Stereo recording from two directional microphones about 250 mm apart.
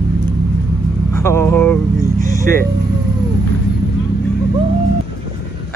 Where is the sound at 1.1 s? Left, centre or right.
Centre.